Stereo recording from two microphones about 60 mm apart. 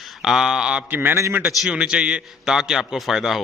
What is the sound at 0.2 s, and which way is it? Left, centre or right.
A man's voice, centre.